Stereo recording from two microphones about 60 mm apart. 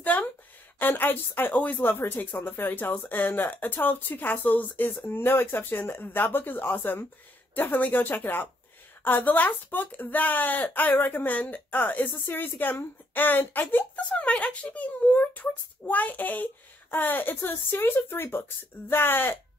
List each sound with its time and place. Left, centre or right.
0.0 s a sound: left
0.7 s speech: left
1.9 s speech: left
13.9 s speech: centre; by 19.3 s left